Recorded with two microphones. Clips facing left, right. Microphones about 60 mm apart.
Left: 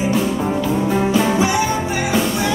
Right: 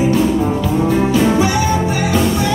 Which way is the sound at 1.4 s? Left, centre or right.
Centre.